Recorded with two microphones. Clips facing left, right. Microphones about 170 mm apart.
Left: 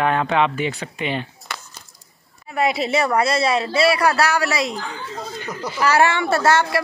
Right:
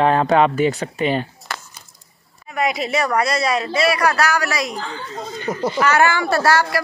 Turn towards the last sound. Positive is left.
turn(degrees=25)  # may be behind; listen again after turning